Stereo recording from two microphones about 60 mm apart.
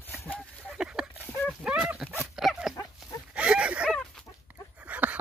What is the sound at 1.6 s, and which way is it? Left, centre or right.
Dog, right.